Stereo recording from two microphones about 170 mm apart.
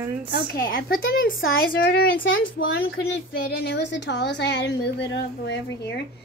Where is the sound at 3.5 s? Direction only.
80° left.